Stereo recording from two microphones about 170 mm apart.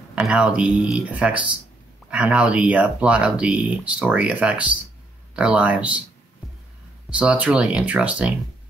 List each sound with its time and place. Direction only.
0.1 s speech: 5° right (ahead or behind)
7.1 s speech: 10° right (ahead or behind)